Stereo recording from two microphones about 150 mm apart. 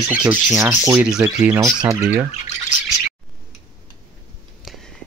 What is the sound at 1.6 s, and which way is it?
Speech, 20° right (ahead or behind).